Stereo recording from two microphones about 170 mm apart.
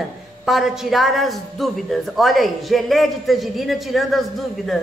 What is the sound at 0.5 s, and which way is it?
A woman's voice, centre (ahead or behind).